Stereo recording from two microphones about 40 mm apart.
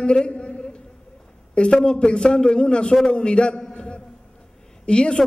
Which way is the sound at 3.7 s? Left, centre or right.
Left.